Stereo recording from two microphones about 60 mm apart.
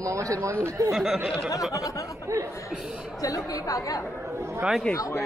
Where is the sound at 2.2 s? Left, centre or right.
Right.